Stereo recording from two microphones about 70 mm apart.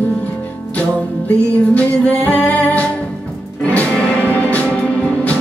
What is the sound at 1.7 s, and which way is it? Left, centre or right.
Music, left.